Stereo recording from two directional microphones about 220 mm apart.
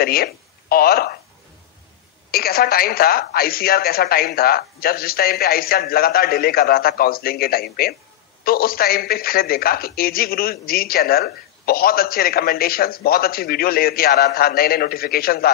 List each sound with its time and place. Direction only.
0.0 s speech: 45° left (ahead or behind)
2.3 s a man's voice: 45° left (ahead or behind)